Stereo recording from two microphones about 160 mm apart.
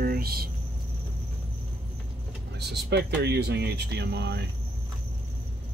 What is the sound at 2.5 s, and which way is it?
Speech, 90° right.